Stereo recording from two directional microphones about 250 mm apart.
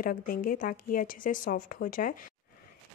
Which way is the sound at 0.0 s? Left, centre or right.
Left.